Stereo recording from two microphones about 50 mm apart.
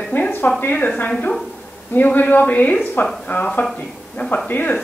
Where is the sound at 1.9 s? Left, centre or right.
Left.